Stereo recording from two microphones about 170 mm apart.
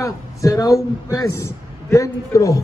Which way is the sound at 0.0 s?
20° left (ahead or behind).